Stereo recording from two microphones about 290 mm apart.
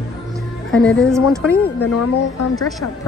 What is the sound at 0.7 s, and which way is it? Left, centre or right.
Speech, centre.